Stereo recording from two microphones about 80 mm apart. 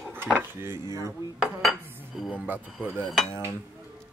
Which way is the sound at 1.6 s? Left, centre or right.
Centre.